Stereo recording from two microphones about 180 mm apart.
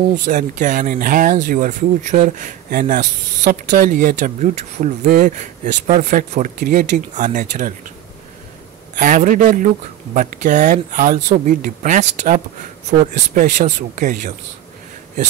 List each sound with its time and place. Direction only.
0.1 s speech: 45° right (ahead or behind)
3.0 s speech: 60° right (ahead or behind)
8.9 s speech: 45° right (ahead or behind)